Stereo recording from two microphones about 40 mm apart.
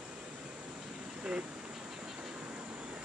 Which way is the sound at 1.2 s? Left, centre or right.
Right.